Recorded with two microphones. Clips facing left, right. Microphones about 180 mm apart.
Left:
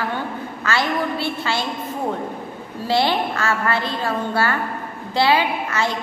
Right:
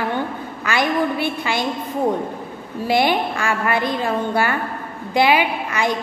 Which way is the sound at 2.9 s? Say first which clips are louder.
Right 1 dB; 15° right (ahead or behind).